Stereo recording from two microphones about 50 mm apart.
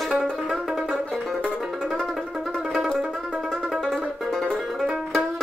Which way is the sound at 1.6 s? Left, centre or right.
Centre.